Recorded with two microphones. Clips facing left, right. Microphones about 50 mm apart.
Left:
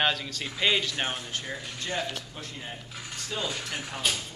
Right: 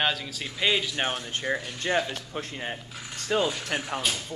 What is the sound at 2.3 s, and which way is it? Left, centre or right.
Speech, right.